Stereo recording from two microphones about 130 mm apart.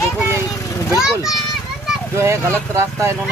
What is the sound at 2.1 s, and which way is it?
Speech, 20° right (ahead or behind).